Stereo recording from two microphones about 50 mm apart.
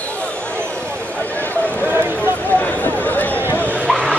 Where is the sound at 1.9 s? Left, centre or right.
Right.